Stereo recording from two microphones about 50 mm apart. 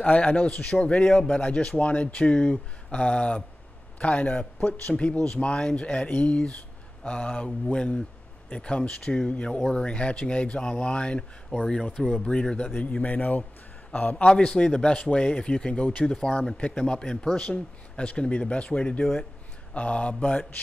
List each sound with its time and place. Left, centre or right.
0.3 s a man's voice: left
11.8 s speech: centre
12.3 s a man's voice: centre
14.1 s a man's voice: left